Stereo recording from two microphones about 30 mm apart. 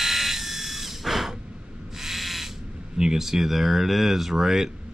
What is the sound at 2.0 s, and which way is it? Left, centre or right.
Ratchet, centre.